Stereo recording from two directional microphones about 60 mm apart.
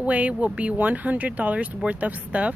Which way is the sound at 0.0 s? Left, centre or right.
Right.